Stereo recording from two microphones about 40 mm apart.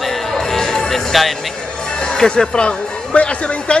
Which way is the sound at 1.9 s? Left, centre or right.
Centre.